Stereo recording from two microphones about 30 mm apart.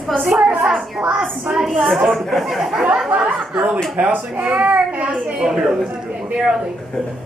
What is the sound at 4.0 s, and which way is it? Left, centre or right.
Speech, right.